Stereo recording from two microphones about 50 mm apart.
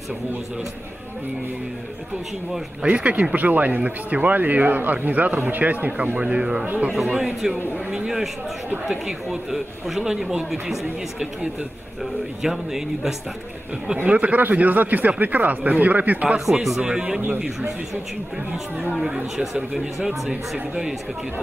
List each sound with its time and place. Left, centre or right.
2.9 s speech: right
7.1 s speech: centre
12.4 s speech: centre
14.0 s speech: right
16.3 s speech: centre
19.0 s speech: centre